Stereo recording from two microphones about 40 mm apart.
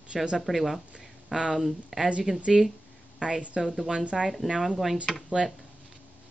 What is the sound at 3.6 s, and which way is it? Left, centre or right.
Speech, centre.